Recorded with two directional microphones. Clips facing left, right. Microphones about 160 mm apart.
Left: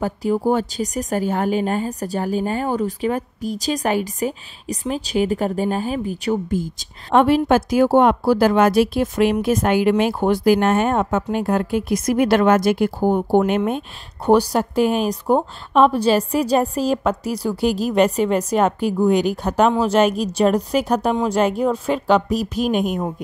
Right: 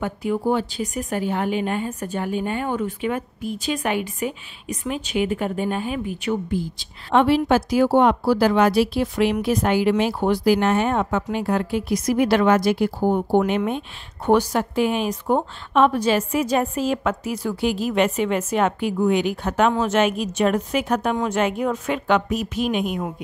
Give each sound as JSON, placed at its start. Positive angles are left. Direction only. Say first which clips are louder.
{"t": 0.0, "sound": "speech", "louder": "left 3 dB", "side_deg": 35}